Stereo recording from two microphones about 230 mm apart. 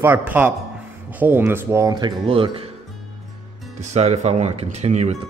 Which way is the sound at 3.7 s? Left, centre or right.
Right.